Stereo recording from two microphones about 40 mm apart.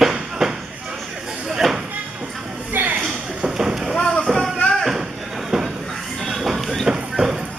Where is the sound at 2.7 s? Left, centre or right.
Right.